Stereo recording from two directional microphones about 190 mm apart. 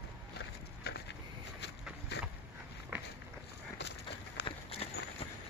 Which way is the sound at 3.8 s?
60° left (ahead or behind).